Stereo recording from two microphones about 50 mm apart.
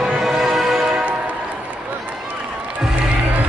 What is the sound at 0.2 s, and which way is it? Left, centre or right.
Music, centre.